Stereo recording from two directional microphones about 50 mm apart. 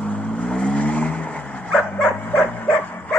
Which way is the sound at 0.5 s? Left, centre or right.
Centre.